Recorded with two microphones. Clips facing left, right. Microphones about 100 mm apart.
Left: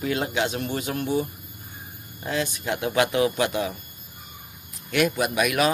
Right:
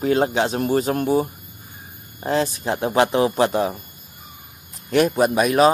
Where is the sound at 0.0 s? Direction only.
35° right (ahead or behind).